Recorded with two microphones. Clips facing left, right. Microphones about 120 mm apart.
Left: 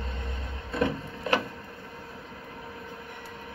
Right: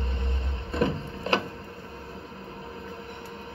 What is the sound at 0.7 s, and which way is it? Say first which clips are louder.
Printer: right 1 dB; 25° right (ahead or behind).